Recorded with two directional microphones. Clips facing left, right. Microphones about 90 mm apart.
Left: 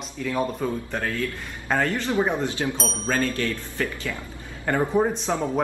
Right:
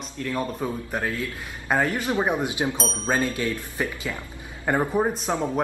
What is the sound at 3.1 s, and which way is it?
Speech, 15° right (ahead or behind).